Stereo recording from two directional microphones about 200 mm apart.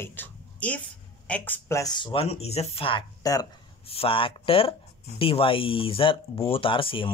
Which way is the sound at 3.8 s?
30° left (ahead or behind).